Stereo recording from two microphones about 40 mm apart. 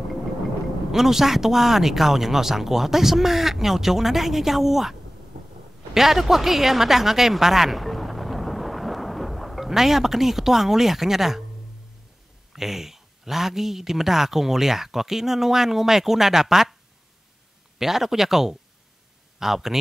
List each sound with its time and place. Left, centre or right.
0.9 s speech: centre
5.9 s speech: centre
12.5 s speech: centre
17.7 s speech: centre